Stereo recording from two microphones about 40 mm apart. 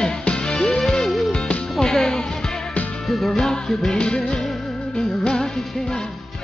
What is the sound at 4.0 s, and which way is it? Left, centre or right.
Music, left.